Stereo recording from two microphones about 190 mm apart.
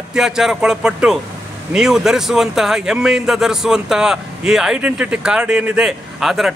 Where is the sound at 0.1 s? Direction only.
5° right (ahead or behind).